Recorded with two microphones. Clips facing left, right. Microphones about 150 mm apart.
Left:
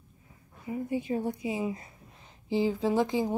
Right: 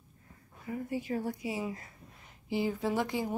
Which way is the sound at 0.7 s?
20° left (ahead or behind).